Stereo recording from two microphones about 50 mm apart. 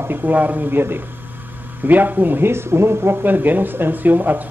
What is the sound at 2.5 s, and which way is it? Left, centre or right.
Speech, right.